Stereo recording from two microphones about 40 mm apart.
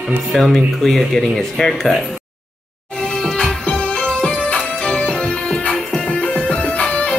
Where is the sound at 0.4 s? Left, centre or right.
Centre.